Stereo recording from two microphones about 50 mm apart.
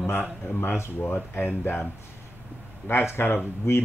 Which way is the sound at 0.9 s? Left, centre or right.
Left.